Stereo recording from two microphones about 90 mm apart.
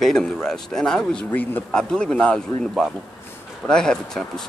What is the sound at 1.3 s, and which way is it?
Speech, 20° left (ahead or behind).